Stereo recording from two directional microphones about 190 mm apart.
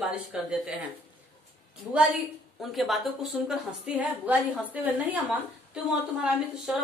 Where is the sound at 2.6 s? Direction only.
Centre (ahead or behind).